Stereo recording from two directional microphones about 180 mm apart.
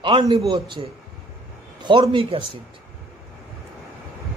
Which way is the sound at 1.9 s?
25° right (ahead or behind).